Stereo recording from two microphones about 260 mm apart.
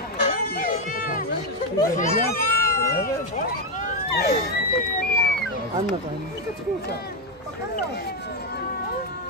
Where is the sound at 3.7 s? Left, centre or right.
Left.